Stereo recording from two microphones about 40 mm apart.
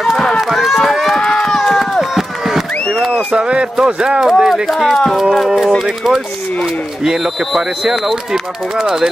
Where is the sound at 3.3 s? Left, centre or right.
Right.